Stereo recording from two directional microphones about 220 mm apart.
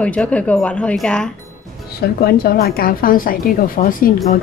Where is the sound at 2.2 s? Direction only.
45° left (ahead or behind).